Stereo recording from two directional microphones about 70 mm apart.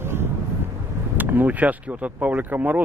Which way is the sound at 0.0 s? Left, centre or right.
Right.